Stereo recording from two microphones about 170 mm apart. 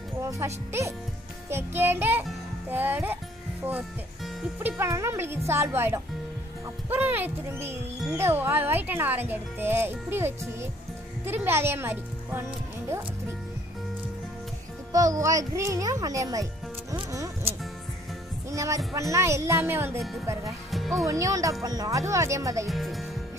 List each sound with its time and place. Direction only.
0.2 s music: 20° right (ahead or behind)
1.5 s a child's voice: 15° right (ahead or behind)
4.6 s a child's voice: 15° right (ahead or behind)
14.9 s a child's voice: 20° right (ahead or behind)
16.9 s music: 15° right (ahead or behind)
18.5 s a child's voice: 20° right (ahead or behind)
20.7 s music: centre (ahead or behind)
21.0 s a child's voice: 20° right (ahead or behind)
22.7 s music: centre (ahead or behind)